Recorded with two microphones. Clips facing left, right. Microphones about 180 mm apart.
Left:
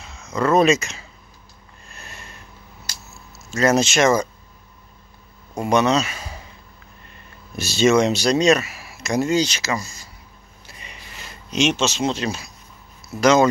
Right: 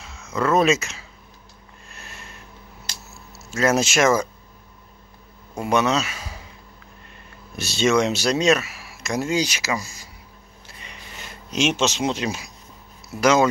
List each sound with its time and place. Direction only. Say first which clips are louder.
0.0 s speech: left 2 dB; 5° right (ahead or behind)
1.9 s a sound: left 1 dB; centre (ahead or behind)
3.3 s speech: left 2 dB; 5° right (ahead or behind)
5.5 s speech: left 3 dB; 5° right (ahead or behind)
7.5 s speech: left 3 dB; centre (ahead or behind)
11.5 s speech: left 2 dB; 5° right (ahead or behind)
11.8 s speech: left 1 dB; 15° right (ahead or behind)